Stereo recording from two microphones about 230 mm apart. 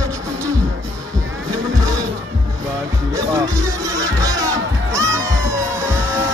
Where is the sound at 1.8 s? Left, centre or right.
Centre.